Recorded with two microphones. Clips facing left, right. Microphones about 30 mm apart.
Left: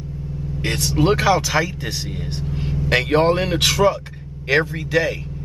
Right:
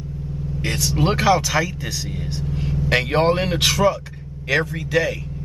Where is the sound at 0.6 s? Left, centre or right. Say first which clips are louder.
Left 2 dB; centre.